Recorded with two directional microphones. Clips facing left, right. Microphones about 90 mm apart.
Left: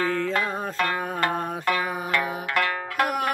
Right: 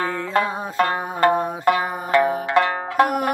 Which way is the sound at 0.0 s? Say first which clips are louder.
Right 3 dB; 25° right (ahead or behind).